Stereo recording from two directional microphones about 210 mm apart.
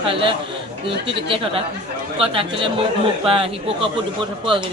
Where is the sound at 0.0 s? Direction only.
25° right (ahead or behind).